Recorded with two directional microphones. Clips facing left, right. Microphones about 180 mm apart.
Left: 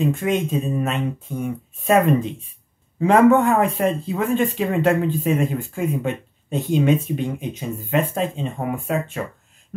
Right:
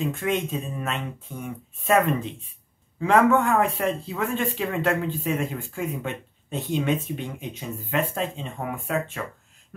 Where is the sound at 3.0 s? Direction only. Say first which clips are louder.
Left 5 dB; 20° left (ahead or behind).